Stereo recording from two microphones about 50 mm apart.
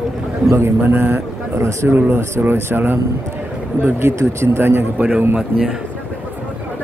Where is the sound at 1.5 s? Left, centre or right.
Right.